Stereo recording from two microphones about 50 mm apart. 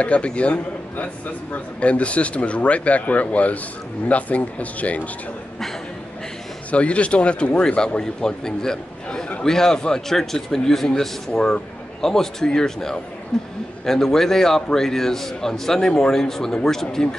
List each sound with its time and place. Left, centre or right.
0.0 s a man's voice: left
6.7 s a man's voice: left